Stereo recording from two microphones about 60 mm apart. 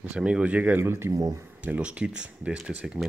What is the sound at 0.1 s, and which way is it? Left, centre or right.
Speech, centre.